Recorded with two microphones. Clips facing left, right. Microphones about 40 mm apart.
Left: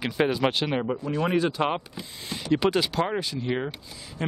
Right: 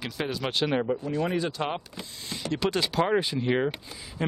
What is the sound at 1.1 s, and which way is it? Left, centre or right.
Speech, left.